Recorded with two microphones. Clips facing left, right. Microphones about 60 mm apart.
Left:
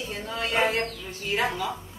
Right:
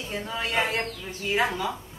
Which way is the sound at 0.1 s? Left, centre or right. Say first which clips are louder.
Right 3 dB; centre.